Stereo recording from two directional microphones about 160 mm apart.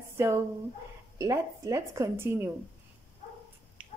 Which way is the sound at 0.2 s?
15° right (ahead or behind).